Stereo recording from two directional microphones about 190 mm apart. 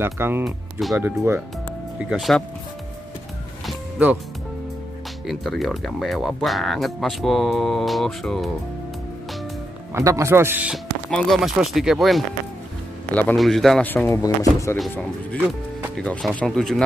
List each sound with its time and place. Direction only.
0.0 s a man's voice: 10° right (ahead or behind)
0.5 s speech: centre (ahead or behind)
0.9 s a man's voice: 10° right (ahead or behind)
3.6 s music: 5° right (ahead or behind)
5.2 s speech: centre (ahead or behind)
9.9 s a man's voice: 15° right (ahead or behind)
11.1 s speech: centre (ahead or behind)
16.0 s speech: 5° left (ahead or behind)